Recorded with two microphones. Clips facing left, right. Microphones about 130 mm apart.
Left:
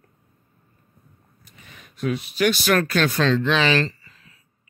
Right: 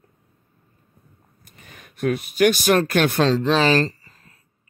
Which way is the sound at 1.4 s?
45° right (ahead or behind).